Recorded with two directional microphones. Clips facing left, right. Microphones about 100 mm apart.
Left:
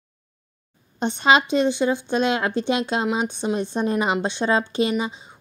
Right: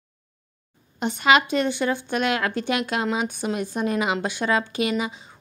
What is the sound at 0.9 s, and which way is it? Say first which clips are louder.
A woman's voice: left 1 dB; 30° left (ahead or behind).